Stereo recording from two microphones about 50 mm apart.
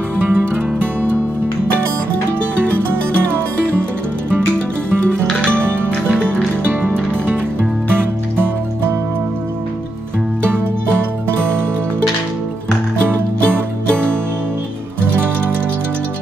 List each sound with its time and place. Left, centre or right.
0.3 s music: right
2.9 s music: right
5.6 s music: right
6.1 s music: left
7.9 s music: right